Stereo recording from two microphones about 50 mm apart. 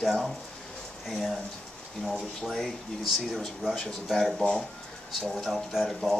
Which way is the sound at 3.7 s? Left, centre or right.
Centre.